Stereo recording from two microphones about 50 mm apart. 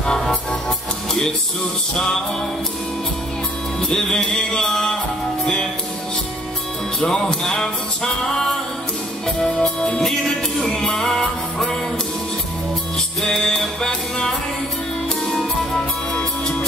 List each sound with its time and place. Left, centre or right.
0.0 s music: centre
3.9 s music: centre
7.0 s music: centre
13.2 s music: centre
16.2 s music: centre